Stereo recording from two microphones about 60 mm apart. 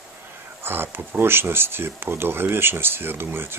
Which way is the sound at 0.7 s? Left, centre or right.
Right.